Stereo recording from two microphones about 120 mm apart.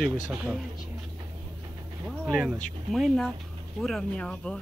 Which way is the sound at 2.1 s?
Centre (ahead or behind).